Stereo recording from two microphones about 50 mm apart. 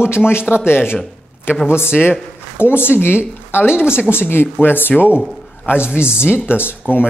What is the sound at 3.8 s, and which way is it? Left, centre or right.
Speech, centre.